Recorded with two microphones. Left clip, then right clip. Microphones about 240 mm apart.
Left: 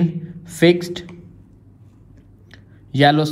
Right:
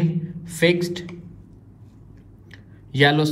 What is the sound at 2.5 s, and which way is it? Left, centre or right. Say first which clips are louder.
Clicking: left 3 dB; left.